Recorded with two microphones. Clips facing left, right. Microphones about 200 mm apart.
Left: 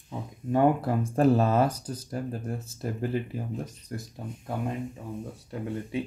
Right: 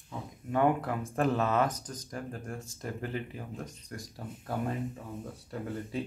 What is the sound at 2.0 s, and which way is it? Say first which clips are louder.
Speech: left 6 dB; 35° left (ahead or behind).